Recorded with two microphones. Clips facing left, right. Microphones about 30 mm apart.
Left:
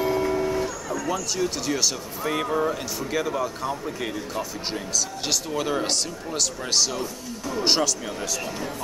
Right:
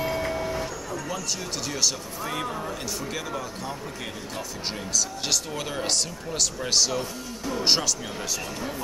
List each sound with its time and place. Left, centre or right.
0.0 s vehicle: right
1.1 s speech: centre
2.2 s speech: centre
3.0 s speech: centre